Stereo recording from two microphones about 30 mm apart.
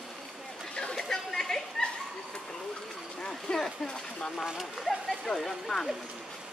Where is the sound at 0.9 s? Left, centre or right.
Centre.